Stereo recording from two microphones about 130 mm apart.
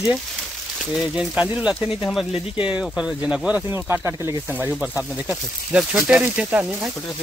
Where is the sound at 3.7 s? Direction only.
20° right (ahead or behind).